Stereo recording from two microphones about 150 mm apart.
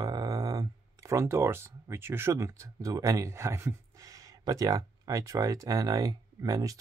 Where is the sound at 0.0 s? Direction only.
25° right (ahead or behind).